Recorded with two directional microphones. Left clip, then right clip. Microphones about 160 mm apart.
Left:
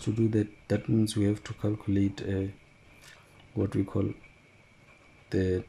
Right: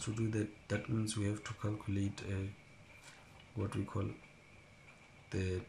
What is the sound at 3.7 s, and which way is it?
Speech, 35° left (ahead or behind).